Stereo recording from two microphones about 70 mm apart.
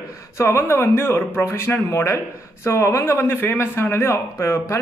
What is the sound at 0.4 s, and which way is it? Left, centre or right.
Speech, left.